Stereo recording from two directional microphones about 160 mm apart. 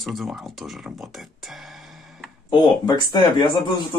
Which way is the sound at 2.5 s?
25° left (ahead or behind).